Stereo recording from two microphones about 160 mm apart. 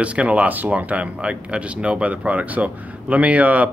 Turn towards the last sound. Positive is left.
turn(degrees=-10)  # may be behind; listen again after turning